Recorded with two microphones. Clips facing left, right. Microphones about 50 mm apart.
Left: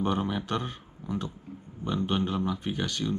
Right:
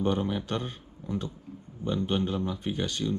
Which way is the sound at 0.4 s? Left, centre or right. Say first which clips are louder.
Left 1 dB; left.